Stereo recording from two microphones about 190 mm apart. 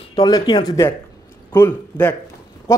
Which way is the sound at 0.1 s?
20° left (ahead or behind).